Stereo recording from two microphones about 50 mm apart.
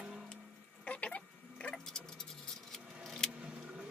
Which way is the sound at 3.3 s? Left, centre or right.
Centre.